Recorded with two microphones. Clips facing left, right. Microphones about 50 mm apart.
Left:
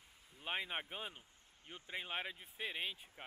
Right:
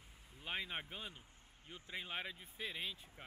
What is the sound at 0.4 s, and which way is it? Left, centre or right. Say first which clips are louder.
Speech: left 2 dB; centre.